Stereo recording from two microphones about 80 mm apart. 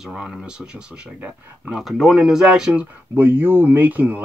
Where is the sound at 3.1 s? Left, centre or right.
Right.